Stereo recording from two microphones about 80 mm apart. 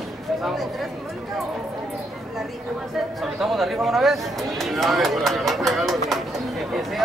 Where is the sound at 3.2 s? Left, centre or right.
Centre.